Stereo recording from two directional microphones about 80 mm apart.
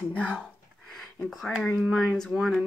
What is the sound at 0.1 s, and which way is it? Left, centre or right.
Speech, centre.